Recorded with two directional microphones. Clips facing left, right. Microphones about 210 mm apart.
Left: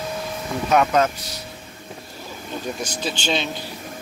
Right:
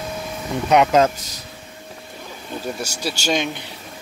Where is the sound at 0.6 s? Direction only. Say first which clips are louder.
Right 3 dB; 20° right (ahead or behind).